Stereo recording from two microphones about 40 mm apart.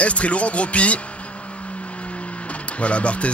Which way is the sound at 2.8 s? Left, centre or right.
Left.